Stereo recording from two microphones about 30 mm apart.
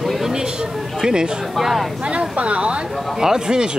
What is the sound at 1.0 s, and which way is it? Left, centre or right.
Speech, right.